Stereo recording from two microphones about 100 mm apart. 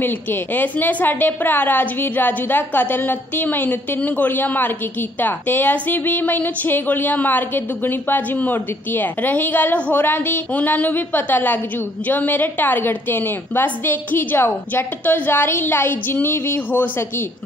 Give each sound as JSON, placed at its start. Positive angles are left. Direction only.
{"t": 0.0, "sound": "a woman's voice", "side_deg": 20}